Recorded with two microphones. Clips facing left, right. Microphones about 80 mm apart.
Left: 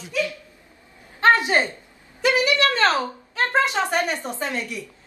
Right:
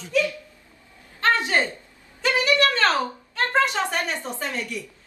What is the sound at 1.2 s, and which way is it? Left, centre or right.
A woman's voice, centre.